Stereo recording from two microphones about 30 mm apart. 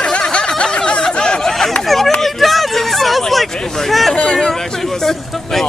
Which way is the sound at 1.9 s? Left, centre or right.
Centre.